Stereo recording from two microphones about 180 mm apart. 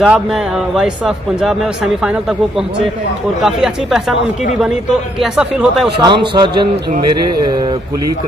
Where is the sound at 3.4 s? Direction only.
Centre (ahead or behind).